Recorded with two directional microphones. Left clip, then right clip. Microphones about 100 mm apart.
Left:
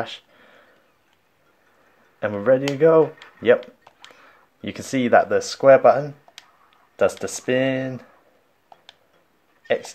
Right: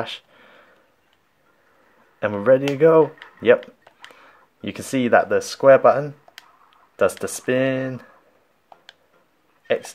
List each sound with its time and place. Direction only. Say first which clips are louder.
0.0 s a sound: right 1 dB; 25° right (ahead or behind)
2.1 s speech: right 2 dB; 25° right (ahead or behind)
7.2 s speech: right 1 dB; 30° right (ahead or behind)
9.7 s speech: even; 30° right (ahead or behind)